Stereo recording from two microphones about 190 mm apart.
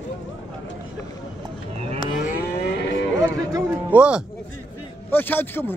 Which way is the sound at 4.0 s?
5° right (ahead or behind).